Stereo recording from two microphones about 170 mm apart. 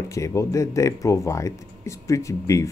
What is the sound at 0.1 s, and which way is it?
Speech, 20° left (ahead or behind).